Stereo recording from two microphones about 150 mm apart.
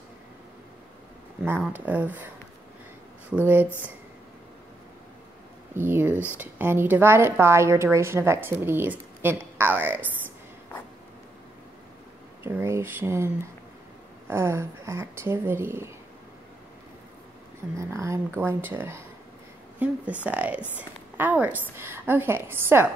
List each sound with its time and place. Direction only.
1.6 s a woman's voice: 10° right (ahead or behind)
3.4 s a woman's voice: 15° right (ahead or behind)
5.8 s a woman's voice: 15° right (ahead or behind)
12.4 s a woman's voice: 20° right (ahead or behind)
17.7 s a woman's voice: 20° right (ahead or behind)